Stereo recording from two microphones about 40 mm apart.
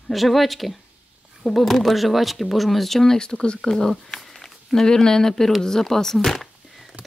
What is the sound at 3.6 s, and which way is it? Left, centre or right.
Speech, centre.